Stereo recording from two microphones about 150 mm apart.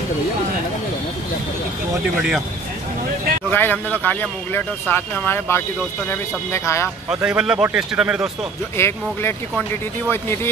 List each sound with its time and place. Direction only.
3.4 s a man's voice: 10° left (ahead or behind)
7.2 s speech: 5° right (ahead or behind)
8.7 s a man's voice: 15° left (ahead or behind)